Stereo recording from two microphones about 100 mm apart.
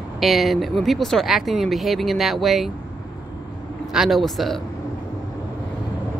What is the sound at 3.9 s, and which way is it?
Speech, centre (ahead or behind).